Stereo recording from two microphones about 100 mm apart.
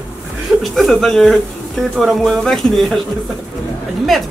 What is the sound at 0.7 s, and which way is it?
Speech, 5° left (ahead or behind).